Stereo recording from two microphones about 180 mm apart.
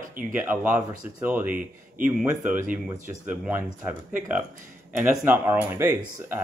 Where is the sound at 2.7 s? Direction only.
45° right (ahead or behind).